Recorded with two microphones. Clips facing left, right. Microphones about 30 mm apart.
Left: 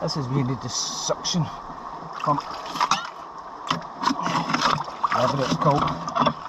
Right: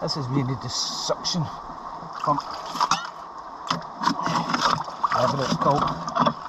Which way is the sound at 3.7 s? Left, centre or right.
Left.